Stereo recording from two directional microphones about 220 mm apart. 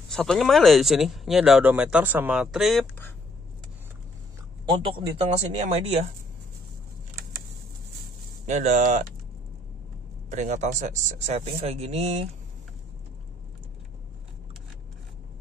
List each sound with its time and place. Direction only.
0.1 s speech: centre (ahead or behind)
4.6 s speech: 25° right (ahead or behind)
8.5 s speech: 30° right (ahead or behind)
10.3 s speech: 35° right (ahead or behind)